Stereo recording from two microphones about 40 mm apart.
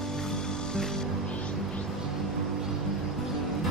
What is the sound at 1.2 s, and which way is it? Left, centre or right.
Music, left.